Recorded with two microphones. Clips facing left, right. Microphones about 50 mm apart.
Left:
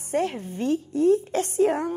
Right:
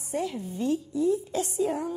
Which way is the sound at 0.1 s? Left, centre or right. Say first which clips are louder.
Left 5 dB; left.